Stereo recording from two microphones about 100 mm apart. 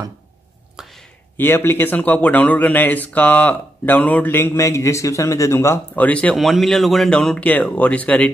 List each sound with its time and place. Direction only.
0.8 s a sound: 5° right (ahead or behind)
1.3 s speech: 20° left (ahead or behind)
5.9 s speech: 15° left (ahead or behind)
6.3 s speech: centre (ahead or behind)